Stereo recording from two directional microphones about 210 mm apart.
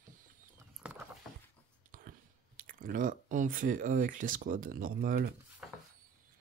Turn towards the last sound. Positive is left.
turn(degrees=0)  # may be behind; listen again after turning